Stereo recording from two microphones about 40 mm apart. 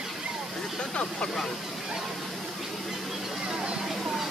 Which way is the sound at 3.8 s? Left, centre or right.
Centre.